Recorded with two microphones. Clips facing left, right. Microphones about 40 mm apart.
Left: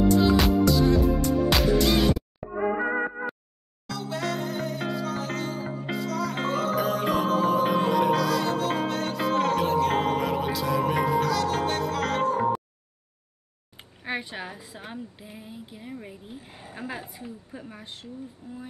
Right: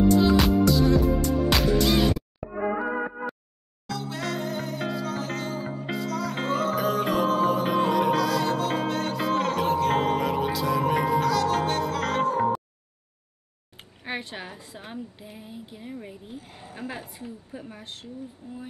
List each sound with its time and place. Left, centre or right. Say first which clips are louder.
0.1 s music: right 1 dB; centre
3.8 s music: left 1 dB; centre
14.0 s a woman's voice: left 1 dB; centre
18.4 s speech: right 1 dB; right